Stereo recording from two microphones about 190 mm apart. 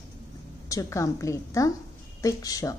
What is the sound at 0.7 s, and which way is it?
A woman's voice, 15° left (ahead or behind).